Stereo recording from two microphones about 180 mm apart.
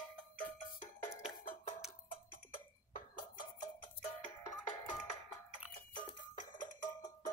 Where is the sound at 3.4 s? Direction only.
45° left (ahead or behind).